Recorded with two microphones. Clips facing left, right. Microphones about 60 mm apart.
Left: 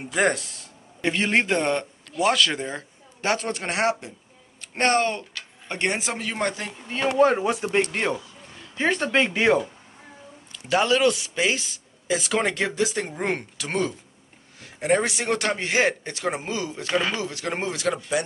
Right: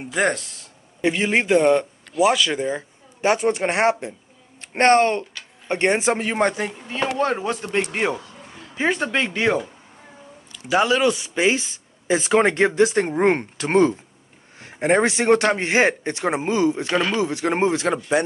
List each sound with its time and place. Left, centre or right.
0.0 s a man's voice: centre; by 6.7 s right
7.2 s speech: centre
7.8 s speech: centre
11.3 s a man's voice: right